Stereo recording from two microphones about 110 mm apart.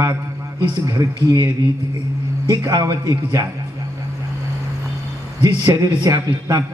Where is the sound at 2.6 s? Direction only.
30° right (ahead or behind).